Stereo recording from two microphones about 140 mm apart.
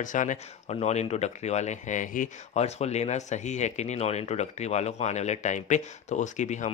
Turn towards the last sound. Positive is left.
turn(degrees=60)  # may be behind; listen again after turning